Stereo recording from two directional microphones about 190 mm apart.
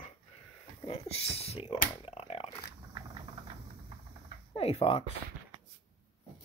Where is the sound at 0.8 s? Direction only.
30° left (ahead or behind).